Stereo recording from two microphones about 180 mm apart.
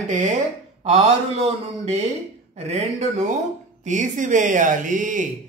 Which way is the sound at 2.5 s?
40° right (ahead or behind).